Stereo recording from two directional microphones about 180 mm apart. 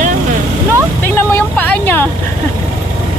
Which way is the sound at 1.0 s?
10° left (ahead or behind).